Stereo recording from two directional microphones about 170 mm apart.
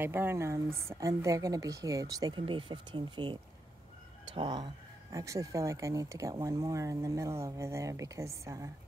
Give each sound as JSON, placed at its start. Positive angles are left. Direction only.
{"t": 0.0, "sound": "speech", "side_deg": -15}